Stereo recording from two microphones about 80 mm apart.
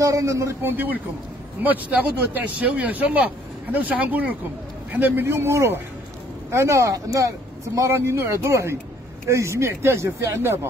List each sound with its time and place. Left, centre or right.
0.0 s speech: right